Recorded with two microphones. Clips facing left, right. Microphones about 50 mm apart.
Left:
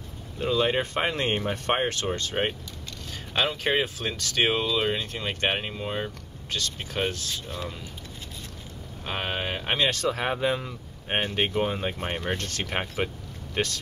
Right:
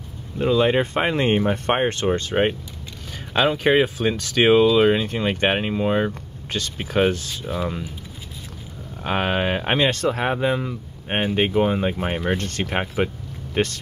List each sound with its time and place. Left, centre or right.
0.4 s speech: centre
9.0 s speech: right